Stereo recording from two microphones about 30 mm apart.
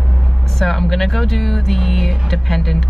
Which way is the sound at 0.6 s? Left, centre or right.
Centre.